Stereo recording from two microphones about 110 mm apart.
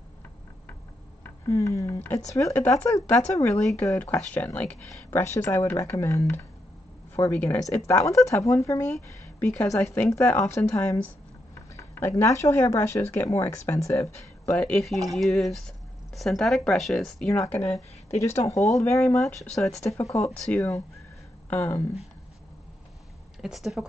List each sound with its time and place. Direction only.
1.5 s speech: 30° left (ahead or behind)
5.2 s speech: 25° left (ahead or behind)
9.4 s speech: 15° left (ahead or behind)
14.5 s speech: 15° left (ahead or behind)
14.8 s speech: centre (ahead or behind)
17.3 s speech: 25° left (ahead or behind)
19.4 s speech: 5° left (ahead or behind)
20.0 s speech: 30° left (ahead or behind)
20.3 s speech: 10° left (ahead or behind)
21.5 s speech: 20° left (ahead or behind)
23.4 s speech: centre (ahead or behind)